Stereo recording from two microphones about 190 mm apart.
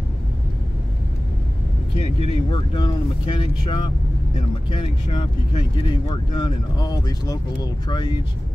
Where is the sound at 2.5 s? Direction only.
25° left (ahead or behind).